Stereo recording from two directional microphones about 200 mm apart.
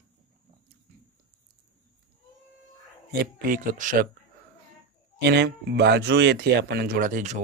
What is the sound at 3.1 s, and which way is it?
Speech, 50° right (ahead or behind).